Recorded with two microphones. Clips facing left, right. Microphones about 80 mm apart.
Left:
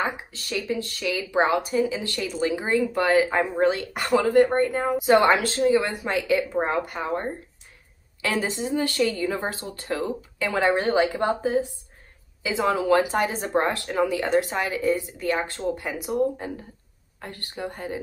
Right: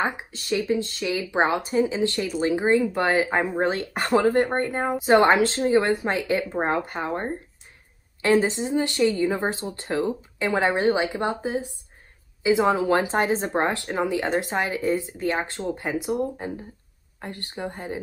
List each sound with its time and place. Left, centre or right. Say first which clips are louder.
0.0 s speech: right 1 dB; right